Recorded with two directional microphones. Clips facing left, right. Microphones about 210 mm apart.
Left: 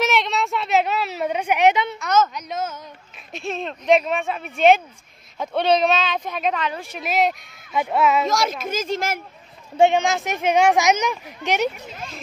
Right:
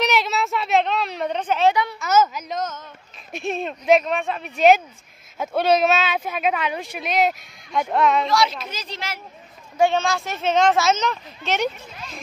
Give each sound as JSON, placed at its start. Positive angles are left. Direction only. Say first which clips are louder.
{"t": 0.0, "sound": "a sound", "louder": "even", "side_deg": 0}
{"t": 2.0, "sound": "speech", "louder": "right 1 dB", "side_deg": -5}
{"t": 3.3, "sound": "speech", "louder": "right 2 dB", "side_deg": -10}
{"t": 4.0, "sound": "speech", "louder": "even", "side_deg": 5}
{"t": 7.0, "sound": "speech", "louder": "even", "side_deg": 0}
{"t": 8.3, "sound": "speech", "louder": "right 1 dB", "side_deg": 45}
{"t": 9.8, "sound": "speech", "louder": "left 3 dB", "side_deg": 20}